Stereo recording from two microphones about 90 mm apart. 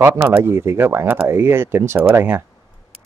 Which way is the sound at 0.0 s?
30° right (ahead or behind).